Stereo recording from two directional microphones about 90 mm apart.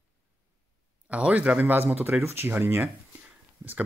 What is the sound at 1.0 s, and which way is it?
Speech, 15° right (ahead or behind).